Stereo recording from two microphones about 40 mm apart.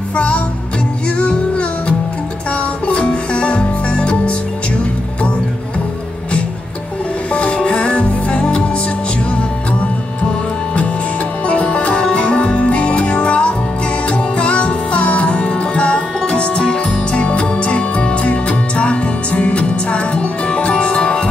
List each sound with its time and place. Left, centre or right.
0.1 s music: left
7.3 s music: left
11.4 s music: left